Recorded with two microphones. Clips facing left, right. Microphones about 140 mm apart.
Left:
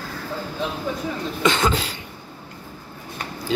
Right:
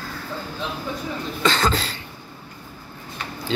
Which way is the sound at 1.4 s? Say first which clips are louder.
Left 1 dB; 20° left (ahead or behind).